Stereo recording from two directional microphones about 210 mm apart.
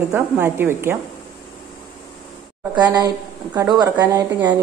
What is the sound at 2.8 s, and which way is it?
A woman's voice, 20° right (ahead or behind).